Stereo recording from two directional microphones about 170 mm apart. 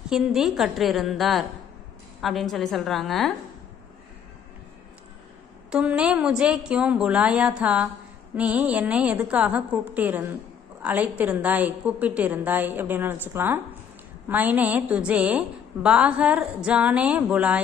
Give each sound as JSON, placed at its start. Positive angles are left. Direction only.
{"t": 0.1, "sound": "a woman's voice", "side_deg": 0}
{"t": 5.7, "sound": "a woman's voice", "side_deg": -5}